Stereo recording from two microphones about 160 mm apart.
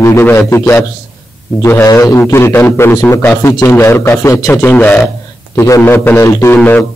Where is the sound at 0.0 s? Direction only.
15° left (ahead or behind).